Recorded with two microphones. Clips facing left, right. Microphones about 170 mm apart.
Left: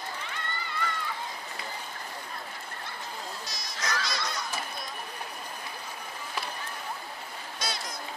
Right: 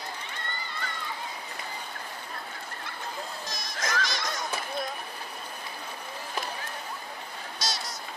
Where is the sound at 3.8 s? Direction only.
50° right (ahead or behind).